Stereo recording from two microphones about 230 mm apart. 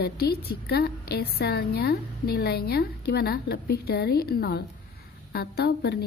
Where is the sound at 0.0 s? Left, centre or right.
Left.